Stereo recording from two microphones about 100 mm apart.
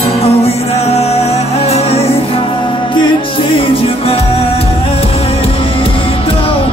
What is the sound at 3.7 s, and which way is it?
Music, 70° left (ahead or behind).